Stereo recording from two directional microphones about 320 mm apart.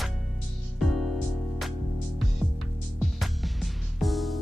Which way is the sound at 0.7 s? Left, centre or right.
Centre.